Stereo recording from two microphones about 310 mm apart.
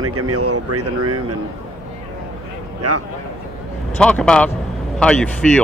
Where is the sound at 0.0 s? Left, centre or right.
Right.